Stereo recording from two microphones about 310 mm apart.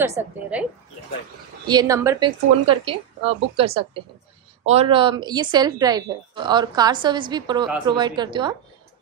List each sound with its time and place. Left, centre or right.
0.0 s speech: centre
1.7 s speech: centre